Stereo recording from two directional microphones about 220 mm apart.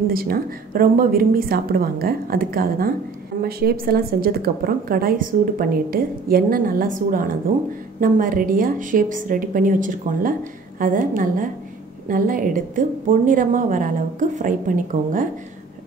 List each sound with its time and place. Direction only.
0.1 s a woman's voice: 40° right (ahead or behind)
8.0 s a woman's voice: 40° right (ahead or behind)